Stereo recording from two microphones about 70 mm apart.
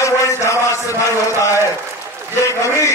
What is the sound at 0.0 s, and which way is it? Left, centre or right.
Chant, left.